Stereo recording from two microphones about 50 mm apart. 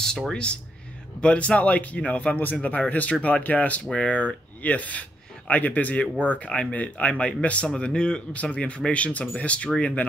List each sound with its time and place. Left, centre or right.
0.3 s speech: left
3.8 s a man's voice: centre